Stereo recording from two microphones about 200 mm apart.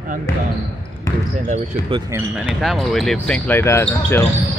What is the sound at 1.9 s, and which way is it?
Speech, 15° right (ahead or behind).